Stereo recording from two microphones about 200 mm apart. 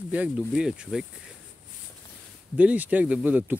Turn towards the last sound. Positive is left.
turn(degrees=-10)  # may be behind; listen again after turning